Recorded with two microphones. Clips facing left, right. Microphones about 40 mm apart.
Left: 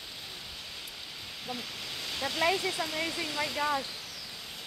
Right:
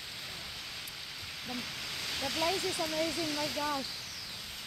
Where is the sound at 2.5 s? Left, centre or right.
Centre.